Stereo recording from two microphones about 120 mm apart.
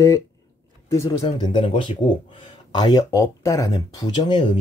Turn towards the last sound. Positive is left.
turn(degrees=40)  # may be behind; listen again after turning